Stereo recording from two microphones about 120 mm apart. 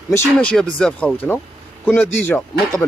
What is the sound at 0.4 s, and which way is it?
Speech, 10° left (ahead or behind).